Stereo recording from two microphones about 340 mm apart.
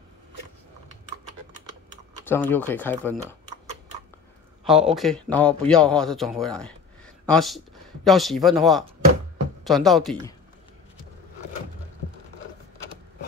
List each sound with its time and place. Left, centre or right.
2.2 s a man's voice: centre
4.6 s a man's voice: centre